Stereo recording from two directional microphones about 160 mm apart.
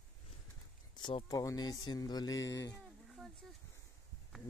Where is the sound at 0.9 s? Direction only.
30° left (ahead or behind).